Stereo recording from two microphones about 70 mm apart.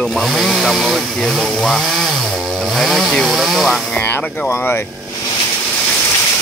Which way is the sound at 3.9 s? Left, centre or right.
Left.